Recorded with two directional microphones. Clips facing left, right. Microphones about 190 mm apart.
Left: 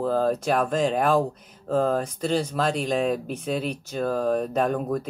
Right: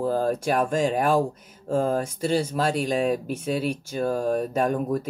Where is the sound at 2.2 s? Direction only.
10° right (ahead or behind).